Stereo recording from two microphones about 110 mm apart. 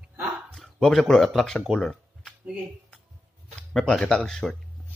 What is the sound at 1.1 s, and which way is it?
Speech, centre (ahead or behind).